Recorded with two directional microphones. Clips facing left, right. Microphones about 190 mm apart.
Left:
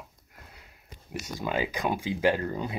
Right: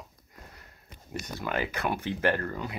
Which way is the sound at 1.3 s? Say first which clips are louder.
Left 2 dB; 15° left (ahead or behind).